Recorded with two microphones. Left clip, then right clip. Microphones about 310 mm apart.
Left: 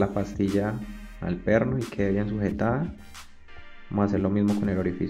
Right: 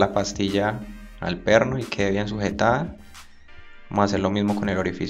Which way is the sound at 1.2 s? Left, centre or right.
Right.